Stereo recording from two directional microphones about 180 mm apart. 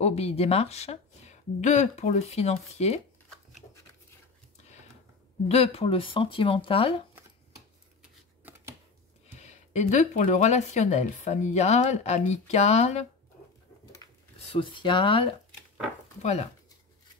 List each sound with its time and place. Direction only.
0.0 s speech: 35° left (ahead or behind)
5.5 s speech: 35° left (ahead or behind)
8.0 s a sound: 10° right (ahead or behind)
9.4 s speech: 40° left (ahead or behind)
14.5 s speech: 30° left (ahead or behind)